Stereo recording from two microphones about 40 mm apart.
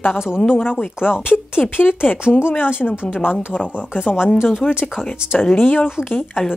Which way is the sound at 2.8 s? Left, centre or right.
Left.